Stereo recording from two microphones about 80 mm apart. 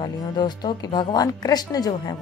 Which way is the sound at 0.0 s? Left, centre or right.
Left.